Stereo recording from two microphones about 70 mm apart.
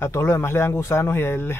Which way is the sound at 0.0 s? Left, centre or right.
Left.